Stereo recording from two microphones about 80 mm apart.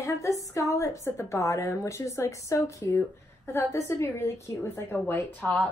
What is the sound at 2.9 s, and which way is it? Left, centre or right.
A woman's voice, left.